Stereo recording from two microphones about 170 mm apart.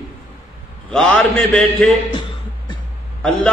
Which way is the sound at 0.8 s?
5° left (ahead or behind).